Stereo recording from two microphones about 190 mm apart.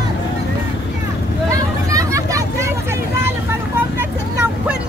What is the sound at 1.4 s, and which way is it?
Vehicle, 15° right (ahead or behind).